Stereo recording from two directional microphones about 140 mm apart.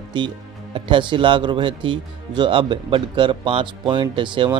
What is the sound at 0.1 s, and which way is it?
Speech, 35° right (ahead or behind).